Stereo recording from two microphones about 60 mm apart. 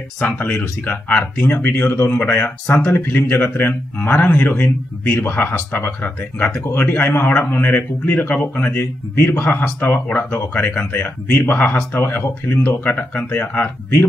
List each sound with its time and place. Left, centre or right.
0.4 s speech: left
8.7 s speech: left